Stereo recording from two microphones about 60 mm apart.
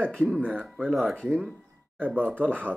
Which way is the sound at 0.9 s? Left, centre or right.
Centre.